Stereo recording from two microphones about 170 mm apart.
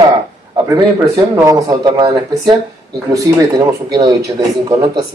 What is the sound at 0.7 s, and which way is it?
Speech, 20° right (ahead or behind).